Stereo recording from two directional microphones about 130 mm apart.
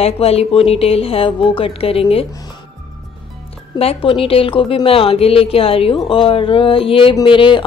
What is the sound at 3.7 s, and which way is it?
A woman's voice, 45° left (ahead or behind).